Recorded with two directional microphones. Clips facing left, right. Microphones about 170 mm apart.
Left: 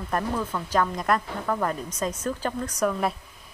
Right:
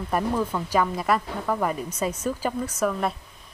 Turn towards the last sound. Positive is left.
turn(degrees=-5)  # may be behind; listen again after turning